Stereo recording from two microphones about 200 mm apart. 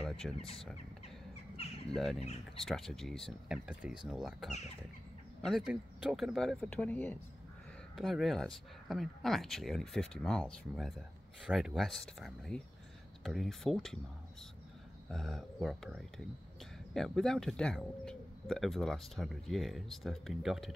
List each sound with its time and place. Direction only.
0.0 s a sound: centre (ahead or behind)
0.4 s speech: 30° left (ahead or behind)
2.1 s speech: 30° left (ahead or behind)
2.6 s speech: centre (ahead or behind)
15.0 s speech: centre (ahead or behind)